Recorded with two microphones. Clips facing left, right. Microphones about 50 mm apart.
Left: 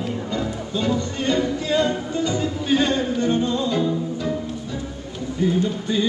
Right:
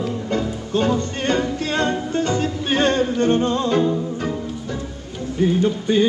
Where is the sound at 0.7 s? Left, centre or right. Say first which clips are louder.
Right 4 dB; right.